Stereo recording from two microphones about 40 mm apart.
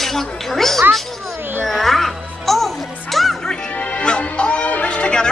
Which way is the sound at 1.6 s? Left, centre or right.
Centre.